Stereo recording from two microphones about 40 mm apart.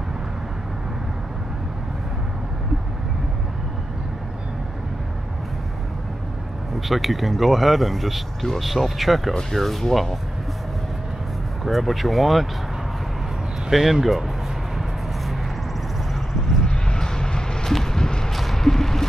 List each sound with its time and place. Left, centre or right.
6.9 s speech: centre
11.6 s speech: centre
13.7 s speech: centre
16.6 s vehicle: centre
17.7 s a sound: centre
18.3 s a sound: centre